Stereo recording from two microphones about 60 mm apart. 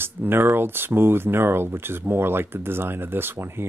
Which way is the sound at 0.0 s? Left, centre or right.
Right.